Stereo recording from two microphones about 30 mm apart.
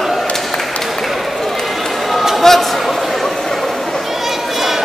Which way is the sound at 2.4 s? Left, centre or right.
Centre.